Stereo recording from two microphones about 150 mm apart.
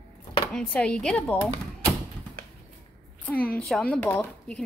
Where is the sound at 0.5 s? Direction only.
5° left (ahead or behind).